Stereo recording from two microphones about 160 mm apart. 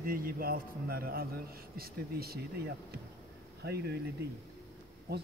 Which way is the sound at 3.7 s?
90° right.